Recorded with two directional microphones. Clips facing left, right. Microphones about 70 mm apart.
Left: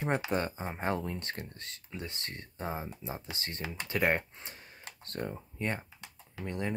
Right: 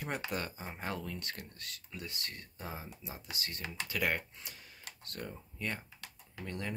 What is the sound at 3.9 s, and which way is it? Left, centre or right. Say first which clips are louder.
Computer keyboard: left 6 dB; left.